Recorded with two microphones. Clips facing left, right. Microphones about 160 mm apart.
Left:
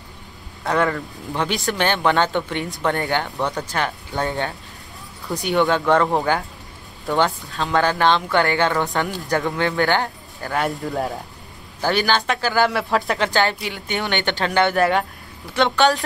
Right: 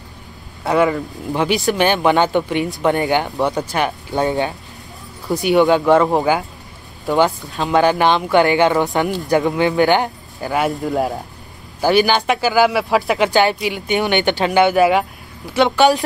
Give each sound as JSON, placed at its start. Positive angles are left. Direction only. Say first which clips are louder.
{"t": 0.7, "sound": "speech", "louder": "right 5 dB", "side_deg": -10}
{"t": 7.1, "sound": "speech", "louder": "right 4 dB", "side_deg": -20}
{"t": 11.8, "sound": "speech", "louder": "right 5 dB", "side_deg": -15}